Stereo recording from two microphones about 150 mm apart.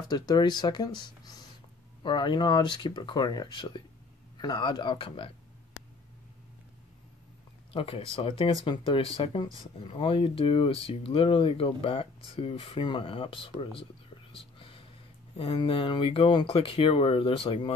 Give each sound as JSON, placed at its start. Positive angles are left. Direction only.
{"t": 0.1, "sound": "speech", "side_deg": 30}
{"t": 7.7, "sound": "speech", "side_deg": 40}
{"t": 14.3, "sound": "whispering", "side_deg": 40}
{"t": 15.3, "sound": "speech", "side_deg": 40}